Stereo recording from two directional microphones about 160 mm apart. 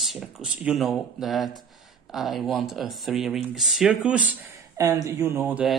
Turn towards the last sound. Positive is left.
turn(degrees=-10)  # may be behind; listen again after turning